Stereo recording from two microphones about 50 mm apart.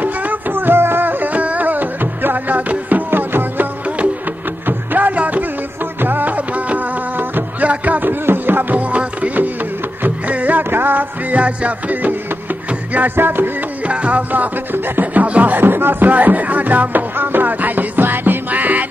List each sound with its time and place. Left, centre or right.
0.0 s music: right
4.6 s music: right
10.7 s music: right
11.3 s music: right
13.8 s music: right